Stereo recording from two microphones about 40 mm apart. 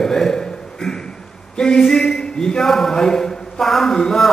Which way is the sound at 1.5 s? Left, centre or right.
Centre.